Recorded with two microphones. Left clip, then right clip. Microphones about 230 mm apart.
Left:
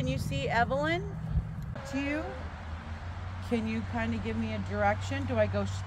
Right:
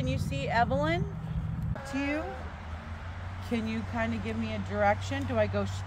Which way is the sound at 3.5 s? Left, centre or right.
Centre.